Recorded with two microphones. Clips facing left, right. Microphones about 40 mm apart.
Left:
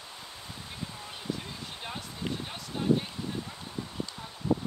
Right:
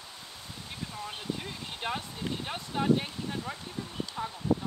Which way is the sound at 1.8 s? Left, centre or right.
Right.